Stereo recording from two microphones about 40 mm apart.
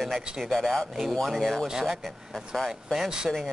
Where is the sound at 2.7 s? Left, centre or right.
Centre.